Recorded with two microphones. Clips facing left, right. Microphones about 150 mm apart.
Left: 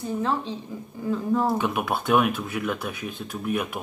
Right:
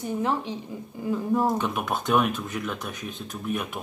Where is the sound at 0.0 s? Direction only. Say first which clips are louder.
Even; 15° right (ahead or behind).